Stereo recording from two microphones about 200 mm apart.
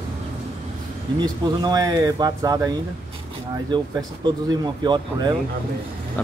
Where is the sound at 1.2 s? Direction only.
20° right (ahead or behind).